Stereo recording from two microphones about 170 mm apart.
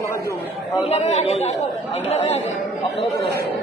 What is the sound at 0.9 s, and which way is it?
Speech, 40° left (ahead or behind).